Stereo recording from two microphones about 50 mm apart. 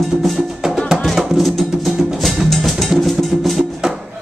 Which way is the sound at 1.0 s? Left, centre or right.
Centre.